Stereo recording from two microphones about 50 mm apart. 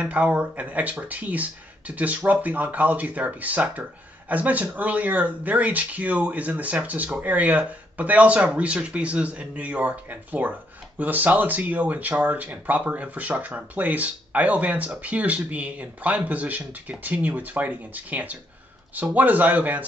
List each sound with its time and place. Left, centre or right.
0.0 s speech: right